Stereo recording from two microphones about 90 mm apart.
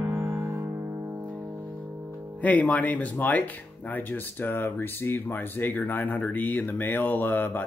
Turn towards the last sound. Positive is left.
turn(degrees=20)  # may be behind; listen again after turning